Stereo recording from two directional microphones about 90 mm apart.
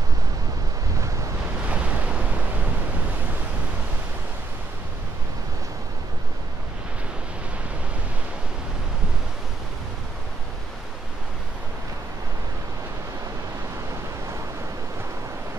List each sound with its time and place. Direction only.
1.7 s waves: 15° right (ahead or behind)